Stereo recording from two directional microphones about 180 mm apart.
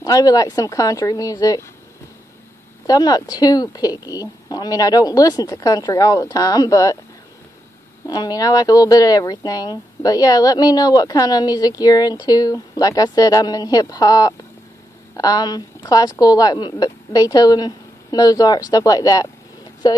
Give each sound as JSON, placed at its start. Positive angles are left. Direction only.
{"t": 0.0, "sound": "speech", "side_deg": 20}
{"t": 2.9, "sound": "speech", "side_deg": 20}
{"t": 8.1, "sound": "speech", "side_deg": 20}